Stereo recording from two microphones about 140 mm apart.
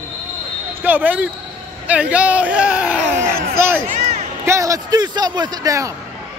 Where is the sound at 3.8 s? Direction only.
55° right (ahead or behind).